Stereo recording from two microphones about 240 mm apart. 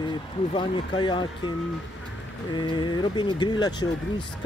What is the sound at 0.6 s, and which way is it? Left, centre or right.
Speech, centre.